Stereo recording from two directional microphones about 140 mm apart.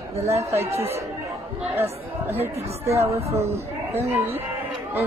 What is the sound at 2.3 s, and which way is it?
Speech, 15° right (ahead or behind).